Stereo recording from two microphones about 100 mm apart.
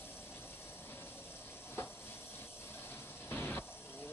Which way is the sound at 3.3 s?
20° left (ahead or behind).